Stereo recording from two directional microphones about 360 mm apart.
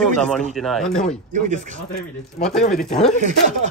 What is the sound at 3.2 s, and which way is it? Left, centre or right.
Speech, centre.